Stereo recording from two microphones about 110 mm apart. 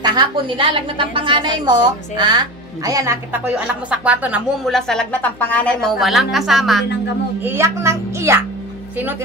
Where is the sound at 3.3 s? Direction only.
10° right (ahead or behind).